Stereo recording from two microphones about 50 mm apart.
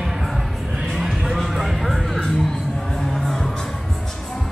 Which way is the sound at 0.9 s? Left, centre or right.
Centre.